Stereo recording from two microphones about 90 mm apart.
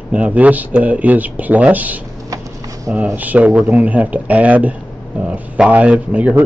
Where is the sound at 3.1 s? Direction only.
20° right (ahead or behind).